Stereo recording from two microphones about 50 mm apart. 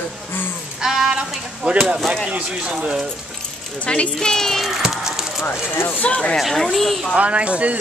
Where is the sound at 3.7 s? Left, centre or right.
Left.